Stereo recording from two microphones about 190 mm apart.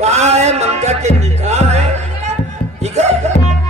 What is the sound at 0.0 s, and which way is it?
Music, 35° right (ahead or behind).